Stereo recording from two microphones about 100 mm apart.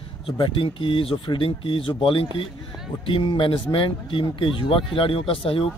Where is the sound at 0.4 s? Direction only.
60° left (ahead or behind).